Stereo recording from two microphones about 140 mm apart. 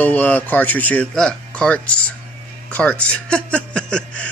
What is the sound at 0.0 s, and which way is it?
Speech, 15° left (ahead or behind).